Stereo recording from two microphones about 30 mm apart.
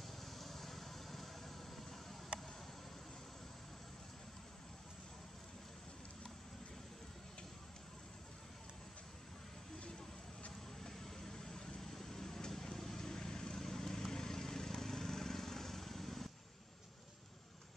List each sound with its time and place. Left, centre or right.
0.2 s vehicle: centre
10.8 s vehicle: centre